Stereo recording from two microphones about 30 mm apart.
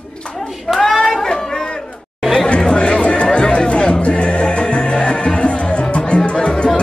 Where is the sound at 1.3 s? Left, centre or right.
Centre.